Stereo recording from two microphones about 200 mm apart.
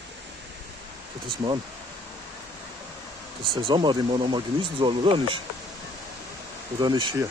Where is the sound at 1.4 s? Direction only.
20° right (ahead or behind).